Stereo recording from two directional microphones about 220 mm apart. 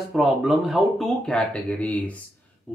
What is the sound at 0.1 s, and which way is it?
Speech, centre (ahead or behind).